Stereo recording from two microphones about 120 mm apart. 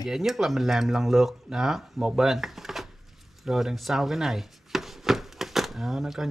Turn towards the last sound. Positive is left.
turn(degrees=-5)  # may be behind; listen again after turning